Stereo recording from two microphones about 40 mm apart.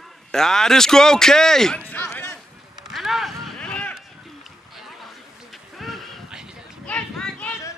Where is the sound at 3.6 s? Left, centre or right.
Left.